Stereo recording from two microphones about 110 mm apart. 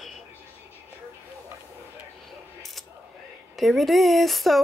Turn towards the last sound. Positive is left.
turn(degrees=0)  # may be behind; listen again after turning